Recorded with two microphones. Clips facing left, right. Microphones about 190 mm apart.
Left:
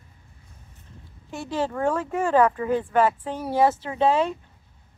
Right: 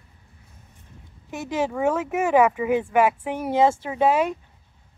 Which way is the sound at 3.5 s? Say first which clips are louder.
Right 1 dB; 20° right (ahead or behind).